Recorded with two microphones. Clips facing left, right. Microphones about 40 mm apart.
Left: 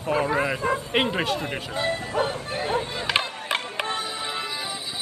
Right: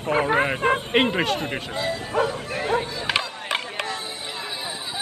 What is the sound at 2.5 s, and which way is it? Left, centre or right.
Speech, right.